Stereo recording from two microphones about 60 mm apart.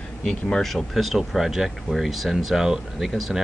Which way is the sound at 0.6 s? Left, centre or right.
Centre.